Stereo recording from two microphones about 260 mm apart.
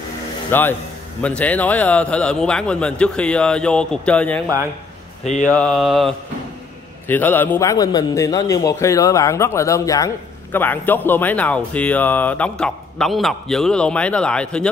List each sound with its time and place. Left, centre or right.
0.5 s a man's voice: centre
5.2 s speech: left
5.5 s a man's voice: centre